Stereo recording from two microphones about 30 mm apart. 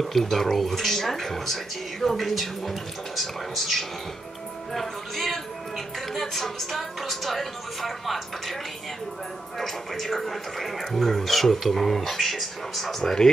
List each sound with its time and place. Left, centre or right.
0.0 s speech: centre
9.6 s speech: centre
13.0 s speech: left